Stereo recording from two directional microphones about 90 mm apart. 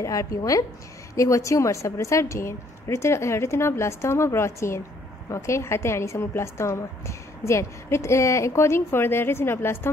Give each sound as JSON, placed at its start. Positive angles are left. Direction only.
{"t": 0.0, "sound": "a woman's voice", "side_deg": 35}